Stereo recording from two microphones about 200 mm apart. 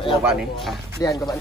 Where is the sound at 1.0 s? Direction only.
15° left (ahead or behind).